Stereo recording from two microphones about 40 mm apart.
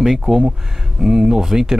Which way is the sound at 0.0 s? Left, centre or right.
Centre.